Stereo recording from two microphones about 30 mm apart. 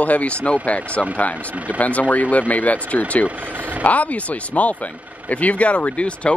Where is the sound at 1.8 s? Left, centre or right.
Left.